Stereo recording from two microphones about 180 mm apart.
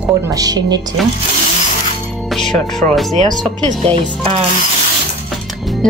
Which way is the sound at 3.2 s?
40° right (ahead or behind).